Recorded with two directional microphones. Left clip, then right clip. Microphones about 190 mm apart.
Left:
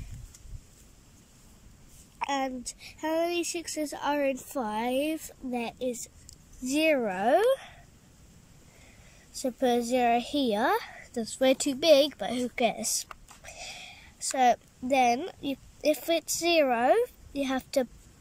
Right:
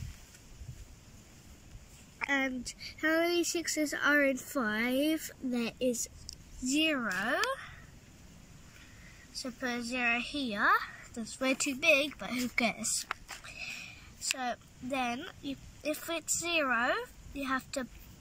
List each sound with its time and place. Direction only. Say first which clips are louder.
2.1 s a woman's voice: left 2 dB; 15° left (ahead or behind)
6.6 s speech: left 5 dB; 25° left (ahead or behind)
9.4 s a woman's voice: left 10 dB; 30° left (ahead or behind); by 12.8 s 15° left (ahead or behind)
12.8 s a sound: left 2 dB; 30° left (ahead or behind)
14.3 s speech: left 12 dB; 30° left (ahead or behind)